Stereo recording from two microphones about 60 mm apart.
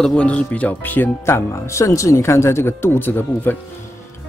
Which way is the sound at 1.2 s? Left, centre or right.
Left.